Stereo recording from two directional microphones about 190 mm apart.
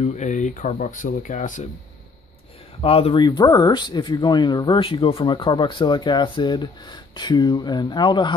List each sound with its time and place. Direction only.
0.0 s speech: 40° left (ahead or behind)
2.8 s speech: 30° left (ahead or behind)